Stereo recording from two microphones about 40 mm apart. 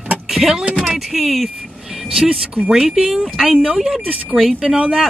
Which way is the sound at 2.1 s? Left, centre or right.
Right.